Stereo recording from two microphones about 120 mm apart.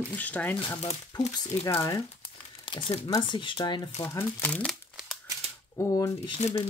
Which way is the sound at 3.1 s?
40° left (ahead or behind).